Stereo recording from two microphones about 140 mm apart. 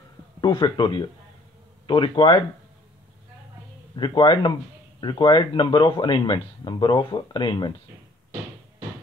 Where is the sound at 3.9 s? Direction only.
35° left (ahead or behind).